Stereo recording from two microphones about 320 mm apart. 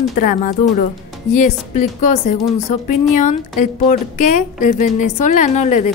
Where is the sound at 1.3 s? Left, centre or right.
Left.